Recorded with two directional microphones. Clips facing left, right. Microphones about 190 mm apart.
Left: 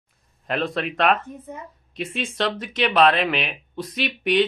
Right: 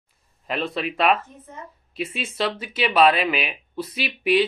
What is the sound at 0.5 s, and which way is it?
Speech, centre (ahead or behind).